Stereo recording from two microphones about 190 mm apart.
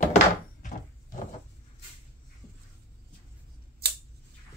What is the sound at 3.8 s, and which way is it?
Scissors, 55° right (ahead or behind).